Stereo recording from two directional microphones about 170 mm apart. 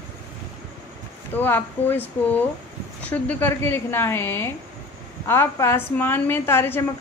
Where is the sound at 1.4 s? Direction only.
10° left (ahead or behind).